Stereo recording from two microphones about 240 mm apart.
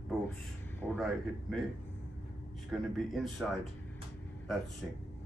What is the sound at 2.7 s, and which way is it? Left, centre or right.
Speech, centre.